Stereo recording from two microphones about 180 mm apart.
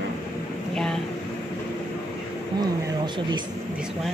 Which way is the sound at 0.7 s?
5° left (ahead or behind).